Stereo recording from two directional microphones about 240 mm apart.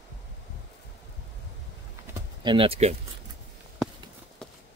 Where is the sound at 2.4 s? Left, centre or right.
Right.